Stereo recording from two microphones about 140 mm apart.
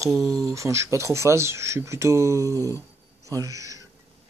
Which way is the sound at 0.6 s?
20° right (ahead or behind).